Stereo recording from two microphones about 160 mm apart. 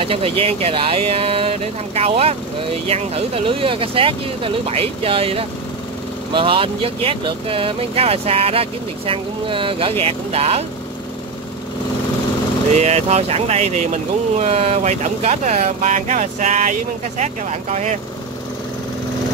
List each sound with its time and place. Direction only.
0.0 s speech: 35° right (ahead or behind)
12.7 s speech: 45° right (ahead or behind)